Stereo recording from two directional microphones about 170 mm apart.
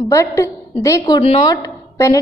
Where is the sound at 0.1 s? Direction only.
15° left (ahead or behind).